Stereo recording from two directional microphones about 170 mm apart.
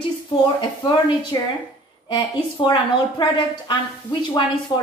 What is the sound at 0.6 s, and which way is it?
A woman's voice, 25° left (ahead or behind).